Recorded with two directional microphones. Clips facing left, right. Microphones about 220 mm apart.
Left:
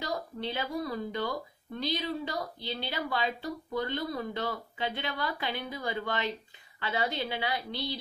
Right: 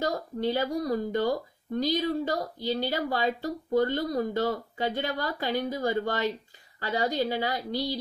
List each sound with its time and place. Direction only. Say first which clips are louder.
0.0 s a woman's voice: right 7 dB; 45° right (ahead or behind)